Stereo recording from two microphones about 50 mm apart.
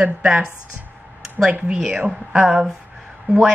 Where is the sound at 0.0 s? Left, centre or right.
Centre.